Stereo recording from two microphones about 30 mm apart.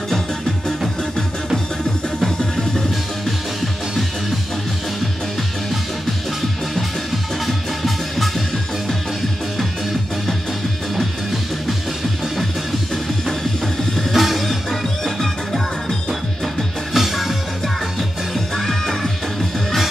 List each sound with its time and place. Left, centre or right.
2.2 s music: centre
7.4 s music: centre
14.1 s music: centre
16.9 s music: centre
18.3 s music: centre